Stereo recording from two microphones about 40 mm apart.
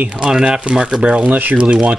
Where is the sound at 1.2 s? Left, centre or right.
Right.